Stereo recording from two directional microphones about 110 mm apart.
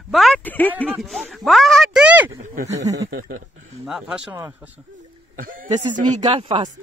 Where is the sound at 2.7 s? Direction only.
30° right (ahead or behind).